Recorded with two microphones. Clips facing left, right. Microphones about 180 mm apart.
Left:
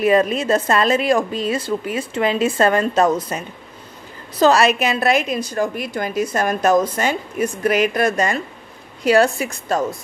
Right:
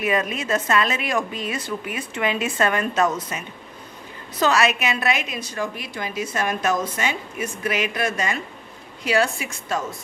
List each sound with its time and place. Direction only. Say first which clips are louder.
0.0 s a woman's voice: left 8 dB; 35° left (ahead or behind)